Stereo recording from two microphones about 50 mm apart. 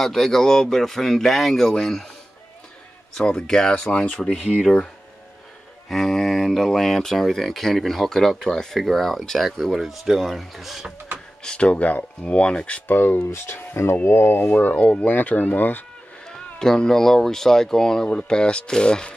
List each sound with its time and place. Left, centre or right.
0.0 s speech: centre
3.2 s speech: centre
5.9 s speech: centre
11.4 s speech: left
12.2 s speech: left
12.8 s speech: left
13.3 s speech: left
14.5 s speech: left
16.3 s speech: centre
18.0 s speech: centre